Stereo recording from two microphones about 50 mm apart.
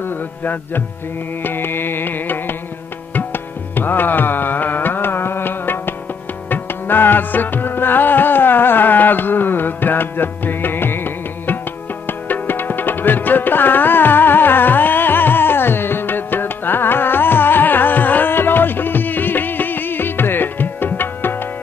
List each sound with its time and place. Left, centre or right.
0.0 s music: left
3.7 s music: left
12.1 s tabla: left